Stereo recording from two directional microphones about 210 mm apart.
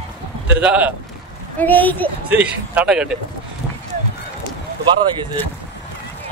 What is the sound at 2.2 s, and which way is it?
Speech, 5° right (ahead or behind).